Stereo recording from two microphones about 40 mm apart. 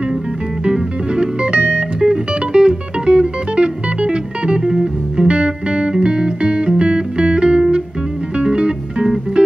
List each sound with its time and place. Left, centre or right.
0.7 s music: right
4.6 s music: centre
5.3 s music: right